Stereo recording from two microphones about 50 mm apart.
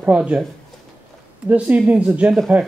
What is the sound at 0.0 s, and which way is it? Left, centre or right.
Speech, right.